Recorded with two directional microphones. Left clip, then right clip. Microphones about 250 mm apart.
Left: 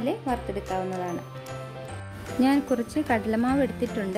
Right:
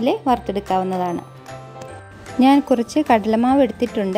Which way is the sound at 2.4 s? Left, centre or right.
Right.